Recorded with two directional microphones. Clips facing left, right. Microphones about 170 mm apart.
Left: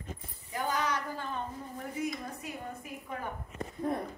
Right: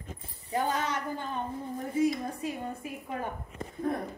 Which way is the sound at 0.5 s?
30° right (ahead or behind).